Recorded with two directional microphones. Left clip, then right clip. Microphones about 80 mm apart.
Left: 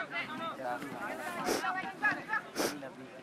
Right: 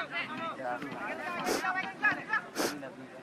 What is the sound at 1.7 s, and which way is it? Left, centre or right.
Speech, right.